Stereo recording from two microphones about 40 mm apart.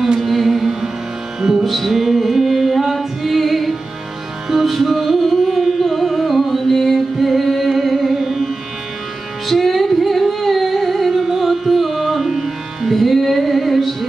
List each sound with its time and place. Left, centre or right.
0.2 s music: centre
9.5 s singing: centre
11.2 s music: centre